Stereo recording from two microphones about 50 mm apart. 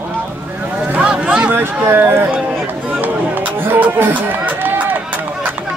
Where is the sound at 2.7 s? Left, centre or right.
Right.